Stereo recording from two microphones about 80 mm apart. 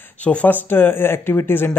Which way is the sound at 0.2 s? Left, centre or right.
Centre.